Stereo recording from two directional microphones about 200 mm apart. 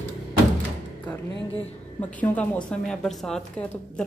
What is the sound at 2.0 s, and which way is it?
A woman's voice, 10° left (ahead or behind).